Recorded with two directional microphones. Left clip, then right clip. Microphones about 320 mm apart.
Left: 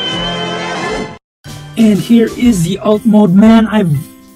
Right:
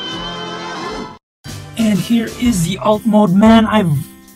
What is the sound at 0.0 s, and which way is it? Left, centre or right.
Music, centre.